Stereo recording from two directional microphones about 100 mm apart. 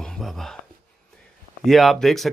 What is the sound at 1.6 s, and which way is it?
Speech, centre (ahead or behind).